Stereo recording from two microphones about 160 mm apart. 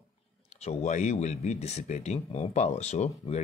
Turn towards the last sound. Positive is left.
turn(degrees=45)  # may be behind; listen again after turning